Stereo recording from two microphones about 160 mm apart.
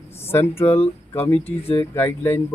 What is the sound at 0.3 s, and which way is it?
Speech, 15° left (ahead or behind).